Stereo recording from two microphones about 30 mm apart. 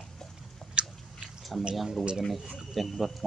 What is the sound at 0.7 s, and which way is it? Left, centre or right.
Biting, right.